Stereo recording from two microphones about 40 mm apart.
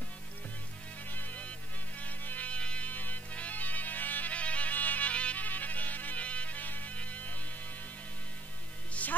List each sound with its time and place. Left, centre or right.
1.1 s music: left
2.5 s music: left
2.9 s music: left
4.3 s music: left
5.4 s music: left
6.2 s music: left
7.0 s mains hum: left
9.0 s music: left